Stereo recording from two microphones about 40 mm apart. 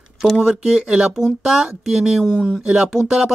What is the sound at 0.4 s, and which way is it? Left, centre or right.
Speech, right.